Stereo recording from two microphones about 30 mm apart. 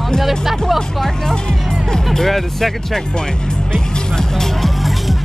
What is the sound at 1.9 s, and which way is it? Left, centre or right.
Speech, centre.